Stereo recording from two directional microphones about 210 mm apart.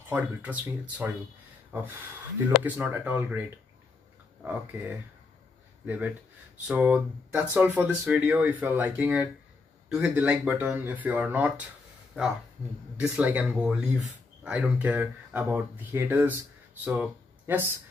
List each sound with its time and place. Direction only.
0.1 s speech: 5° right (ahead or behind)
6.7 s speech: 5° right (ahead or behind)